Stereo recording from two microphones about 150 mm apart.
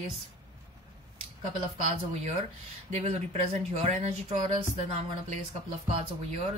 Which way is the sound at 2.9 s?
45° right (ahead or behind).